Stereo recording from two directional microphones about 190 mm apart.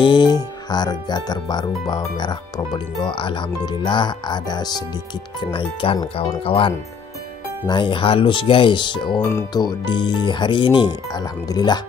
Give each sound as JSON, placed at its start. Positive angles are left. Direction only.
{"t": 0.0, "sound": "speech", "side_deg": 25}